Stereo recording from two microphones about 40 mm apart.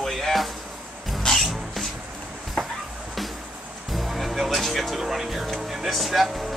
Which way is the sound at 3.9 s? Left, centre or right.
Centre.